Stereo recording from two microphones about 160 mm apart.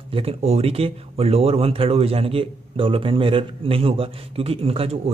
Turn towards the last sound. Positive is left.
turn(degrees=-35)  # may be behind; listen again after turning